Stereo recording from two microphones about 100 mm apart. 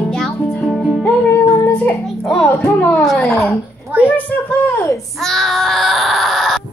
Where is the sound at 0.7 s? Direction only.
5° right (ahead or behind).